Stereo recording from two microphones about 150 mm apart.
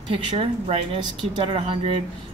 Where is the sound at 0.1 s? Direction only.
40° right (ahead or behind).